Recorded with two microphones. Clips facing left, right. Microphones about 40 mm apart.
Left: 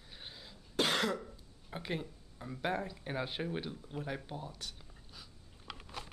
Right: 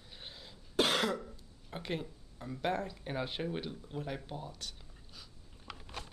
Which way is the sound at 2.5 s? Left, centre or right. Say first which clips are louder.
Right 1 dB; centre.